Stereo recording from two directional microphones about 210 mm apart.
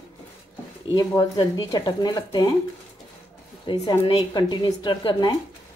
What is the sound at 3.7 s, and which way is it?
Speech, 20° left (ahead or behind).